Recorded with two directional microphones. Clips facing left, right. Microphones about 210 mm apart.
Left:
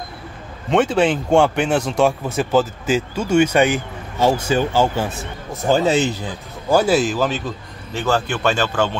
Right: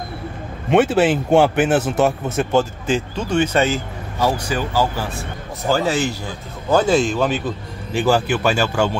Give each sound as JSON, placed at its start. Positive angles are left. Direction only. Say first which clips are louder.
{"t": 0.7, "sound": "speech", "louder": "right 1 dB", "side_deg": -5}
{"t": 6.7, "sound": "speech", "louder": "even", "side_deg": 5}
{"t": 7.9, "sound": "speech", "louder": "right 3 dB", "side_deg": -10}